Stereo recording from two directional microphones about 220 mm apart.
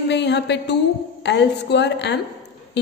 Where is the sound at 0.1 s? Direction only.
50° left (ahead or behind).